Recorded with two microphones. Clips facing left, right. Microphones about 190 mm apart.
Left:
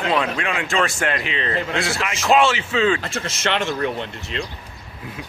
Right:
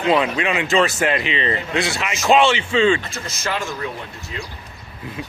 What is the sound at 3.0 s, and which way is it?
Speech, 90° left.